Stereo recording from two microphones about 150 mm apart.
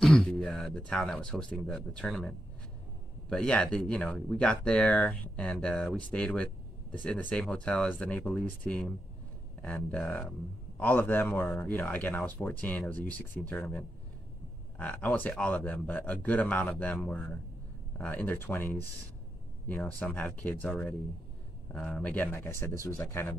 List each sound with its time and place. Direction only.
0.0 s speech: 5° left (ahead or behind)